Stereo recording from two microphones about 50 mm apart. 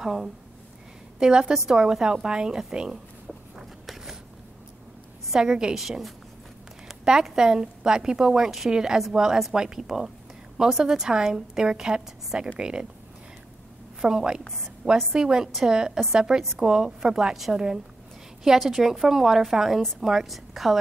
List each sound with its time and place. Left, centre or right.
0.0 s a woman's voice: centre
3.8 s a sound: centre
5.3 s a woman's voice: centre
14.0 s a woman's voice: centre